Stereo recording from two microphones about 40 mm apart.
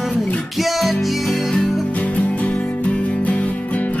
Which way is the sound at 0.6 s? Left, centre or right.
Centre.